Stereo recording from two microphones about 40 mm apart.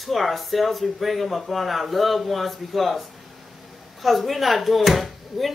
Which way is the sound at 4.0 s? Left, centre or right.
Centre.